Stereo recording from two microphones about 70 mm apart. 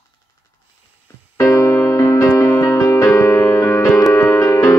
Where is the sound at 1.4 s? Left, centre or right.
Left.